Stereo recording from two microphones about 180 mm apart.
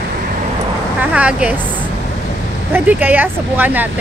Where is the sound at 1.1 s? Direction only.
5° right (ahead or behind).